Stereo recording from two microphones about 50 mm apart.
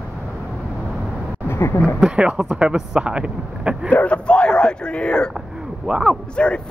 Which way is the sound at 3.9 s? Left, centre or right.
Left.